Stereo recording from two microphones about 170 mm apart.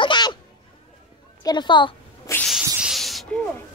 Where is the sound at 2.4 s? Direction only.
Centre (ahead or behind).